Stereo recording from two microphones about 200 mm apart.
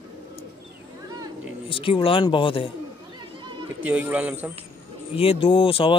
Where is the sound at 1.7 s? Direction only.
25° left (ahead or behind).